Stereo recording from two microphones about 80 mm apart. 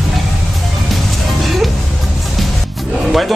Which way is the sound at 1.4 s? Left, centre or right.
Centre.